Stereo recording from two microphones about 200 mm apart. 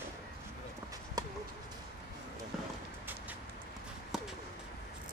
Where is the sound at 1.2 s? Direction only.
20° right (ahead or behind).